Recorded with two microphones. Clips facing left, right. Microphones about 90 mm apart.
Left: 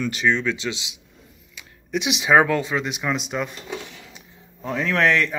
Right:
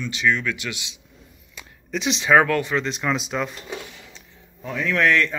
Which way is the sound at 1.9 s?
5° left (ahead or behind).